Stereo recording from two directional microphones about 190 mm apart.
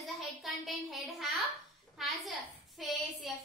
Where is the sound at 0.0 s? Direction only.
Centre (ahead or behind).